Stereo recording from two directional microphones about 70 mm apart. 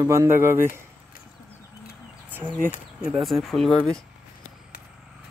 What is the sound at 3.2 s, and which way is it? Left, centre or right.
Speech, centre.